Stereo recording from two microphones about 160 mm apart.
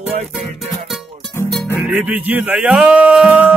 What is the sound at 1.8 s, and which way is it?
Speech, 10° right (ahead or behind).